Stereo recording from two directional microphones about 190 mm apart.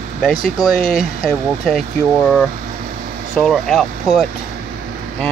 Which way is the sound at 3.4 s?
Centre (ahead or behind).